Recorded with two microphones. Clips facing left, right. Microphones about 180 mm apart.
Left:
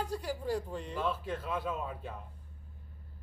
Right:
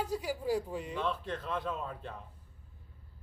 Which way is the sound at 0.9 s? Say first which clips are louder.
Left 2 dB; 5° left (ahead or behind).